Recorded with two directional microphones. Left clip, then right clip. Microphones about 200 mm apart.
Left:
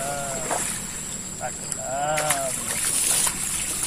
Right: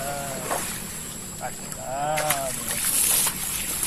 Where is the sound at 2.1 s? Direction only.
15° left (ahead or behind).